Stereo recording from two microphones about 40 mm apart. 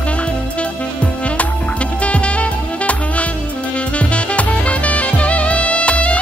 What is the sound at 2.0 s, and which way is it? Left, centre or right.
Music, left.